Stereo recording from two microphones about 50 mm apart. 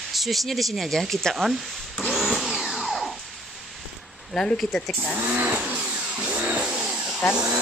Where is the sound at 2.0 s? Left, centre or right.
Centre.